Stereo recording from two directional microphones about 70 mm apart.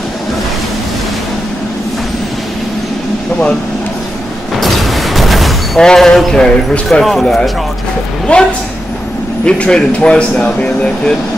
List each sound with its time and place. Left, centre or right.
4.6 s artillery fire: centre
5.9 s speech: centre
8.3 s speech: centre